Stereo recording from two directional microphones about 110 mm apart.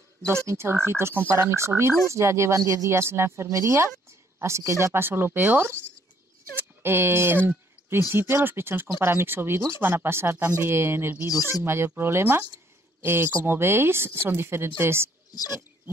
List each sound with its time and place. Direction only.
0.5 s speech: 25° right (ahead or behind)